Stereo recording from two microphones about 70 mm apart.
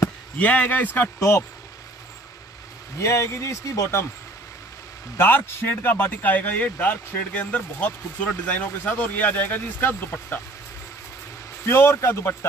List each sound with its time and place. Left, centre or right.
0.4 s speech: left
3.0 s speech: left
5.1 s speech: left
11.6 s speech: left